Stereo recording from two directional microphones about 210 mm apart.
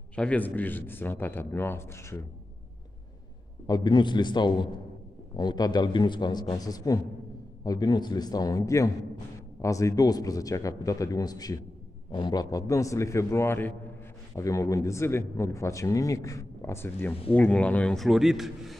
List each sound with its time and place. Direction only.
0.1 s speech: 5° left (ahead or behind)
3.6 s a man's voice: 20° left (ahead or behind); by 18.8 s centre (ahead or behind)